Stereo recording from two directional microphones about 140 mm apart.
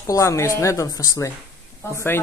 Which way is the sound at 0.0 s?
20° left (ahead or behind).